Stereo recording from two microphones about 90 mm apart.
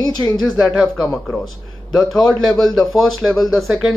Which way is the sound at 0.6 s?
Centre (ahead or behind).